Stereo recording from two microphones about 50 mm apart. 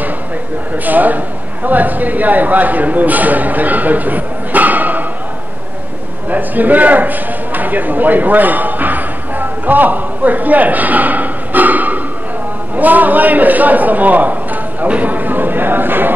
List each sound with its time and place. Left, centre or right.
0.8 s speech: right
6.3 s a man's voice: right